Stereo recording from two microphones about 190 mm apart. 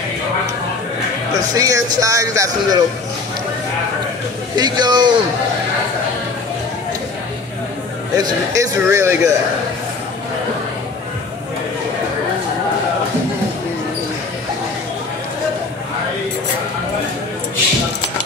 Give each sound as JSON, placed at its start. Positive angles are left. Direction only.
{"t": 1.3, "sound": "speech", "side_deg": -20}
{"t": 4.6, "sound": "a man's voice", "side_deg": -20}
{"t": 8.2, "sound": "speech", "side_deg": -15}